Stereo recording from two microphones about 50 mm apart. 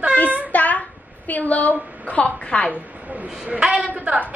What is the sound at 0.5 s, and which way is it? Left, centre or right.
Child singing, left.